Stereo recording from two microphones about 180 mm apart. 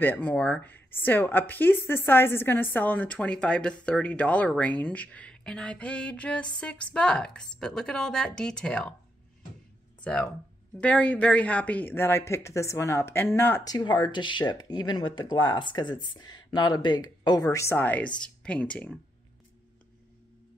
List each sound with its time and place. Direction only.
0.0 s speech: 10° left (ahead or behind)
10.0 s speech: 5° left (ahead or behind)
13.7 s speech: 25° left (ahead or behind); by 18.9 s 5° left (ahead or behind)